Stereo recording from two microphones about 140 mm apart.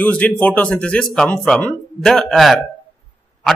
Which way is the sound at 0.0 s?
10° left (ahead or behind).